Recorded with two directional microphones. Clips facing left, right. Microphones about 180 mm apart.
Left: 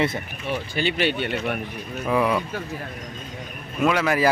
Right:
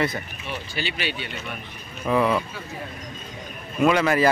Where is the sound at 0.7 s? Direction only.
50° left (ahead or behind).